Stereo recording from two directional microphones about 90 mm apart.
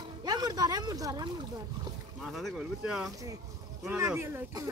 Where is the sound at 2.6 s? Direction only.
10° right (ahead or behind).